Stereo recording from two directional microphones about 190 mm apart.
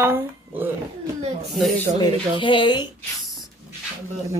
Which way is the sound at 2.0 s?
25° left (ahead or behind).